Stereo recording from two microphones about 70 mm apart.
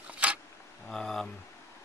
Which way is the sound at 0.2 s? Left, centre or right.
Centre.